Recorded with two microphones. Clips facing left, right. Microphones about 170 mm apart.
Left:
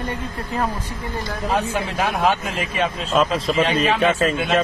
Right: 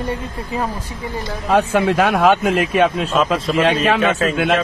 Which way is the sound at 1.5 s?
70° right (ahead or behind).